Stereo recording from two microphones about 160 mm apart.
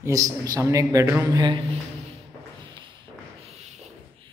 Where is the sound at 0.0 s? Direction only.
20° right (ahead or behind).